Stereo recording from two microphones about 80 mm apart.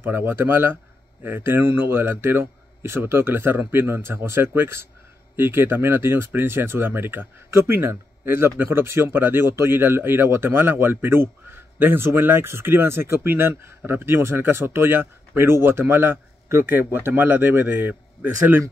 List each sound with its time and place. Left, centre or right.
0.0 s speech: right